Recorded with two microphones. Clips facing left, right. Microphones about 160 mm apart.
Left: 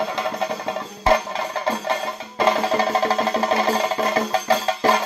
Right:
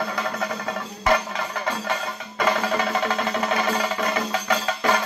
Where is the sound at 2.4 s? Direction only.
35° left (ahead or behind).